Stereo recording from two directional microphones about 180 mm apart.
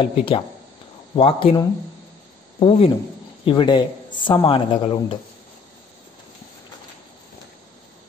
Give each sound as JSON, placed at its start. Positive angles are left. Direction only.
{"t": 0.0, "sound": "speech", "side_deg": 30}